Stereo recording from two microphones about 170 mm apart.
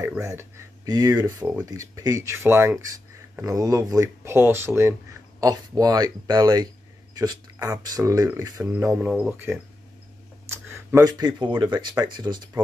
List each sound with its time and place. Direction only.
0.2 s speech: 15° right (ahead or behind)